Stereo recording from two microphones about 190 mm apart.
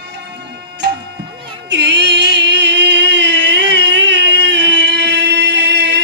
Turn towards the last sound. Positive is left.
turn(degrees=-65)  # may be behind; listen again after turning